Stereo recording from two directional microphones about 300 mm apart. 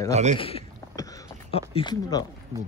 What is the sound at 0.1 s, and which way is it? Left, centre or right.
Speech, right.